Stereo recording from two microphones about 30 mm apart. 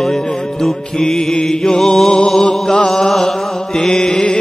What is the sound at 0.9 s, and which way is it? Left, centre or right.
Mantra, left.